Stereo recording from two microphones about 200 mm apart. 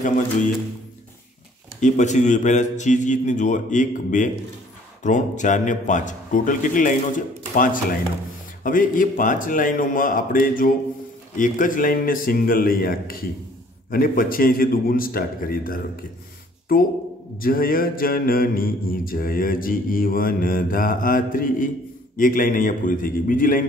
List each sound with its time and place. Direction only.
1.8 s a man's voice: 35° left (ahead or behind)
7.5 s mantra: 45° left (ahead or behind)